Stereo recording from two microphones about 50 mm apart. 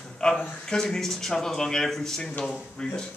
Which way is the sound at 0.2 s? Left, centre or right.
Centre.